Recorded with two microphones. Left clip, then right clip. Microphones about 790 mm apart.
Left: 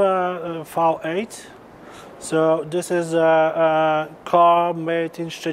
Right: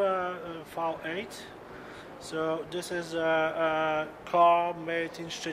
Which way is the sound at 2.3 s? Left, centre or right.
Left.